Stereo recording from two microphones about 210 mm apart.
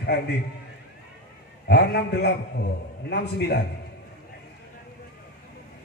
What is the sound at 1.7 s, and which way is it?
Speech, 50° left (ahead or behind).